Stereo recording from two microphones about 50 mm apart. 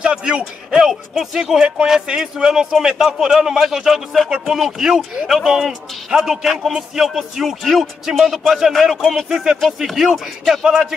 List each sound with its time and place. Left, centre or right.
0.0 s speech: centre
8.7 s speech: centre